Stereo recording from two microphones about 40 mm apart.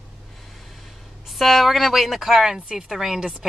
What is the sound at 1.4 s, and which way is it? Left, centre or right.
Speech, centre.